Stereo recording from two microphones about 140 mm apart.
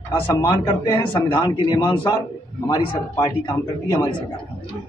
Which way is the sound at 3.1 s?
25° left (ahead or behind).